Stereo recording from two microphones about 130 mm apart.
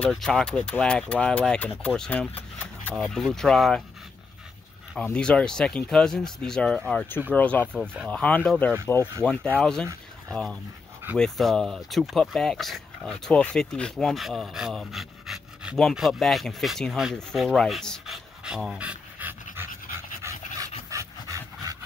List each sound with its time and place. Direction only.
0.0 s speech: 5° left (ahead or behind)
4.9 s speech: 10° left (ahead or behind); by 19.7 s 15° right (ahead or behind)
20.2 s dog: 20° right (ahead or behind)